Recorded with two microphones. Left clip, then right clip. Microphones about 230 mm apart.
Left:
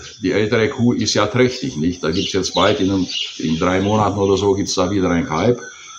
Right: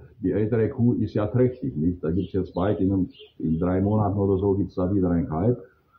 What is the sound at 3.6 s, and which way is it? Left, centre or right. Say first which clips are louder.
Speech: left 9 dB; centre.